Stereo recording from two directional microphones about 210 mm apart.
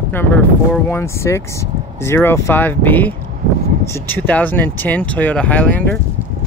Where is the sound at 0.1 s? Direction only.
10° left (ahead or behind).